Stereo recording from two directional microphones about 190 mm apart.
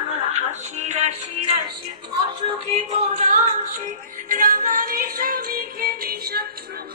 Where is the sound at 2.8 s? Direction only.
40° right (ahead or behind); by 6.5 s 55° right (ahead or behind).